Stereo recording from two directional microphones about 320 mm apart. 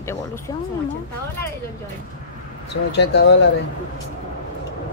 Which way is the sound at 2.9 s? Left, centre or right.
Left.